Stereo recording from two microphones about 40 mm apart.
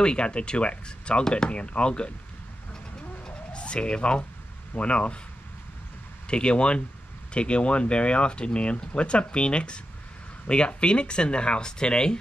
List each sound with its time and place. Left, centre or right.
0.0 s speech: left
3.3 s a sound: left
4.7 s speech: left
6.2 s speech: left